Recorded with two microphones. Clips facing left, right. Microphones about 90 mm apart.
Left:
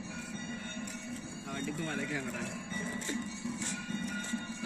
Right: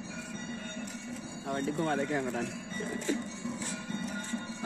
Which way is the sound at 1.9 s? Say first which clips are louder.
Right 6 dB; 35° right (ahead or behind).